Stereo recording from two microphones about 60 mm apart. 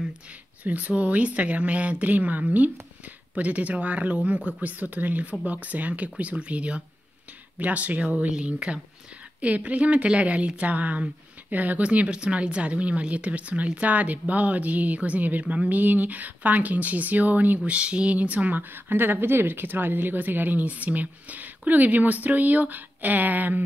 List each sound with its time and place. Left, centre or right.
0.7 s speech: right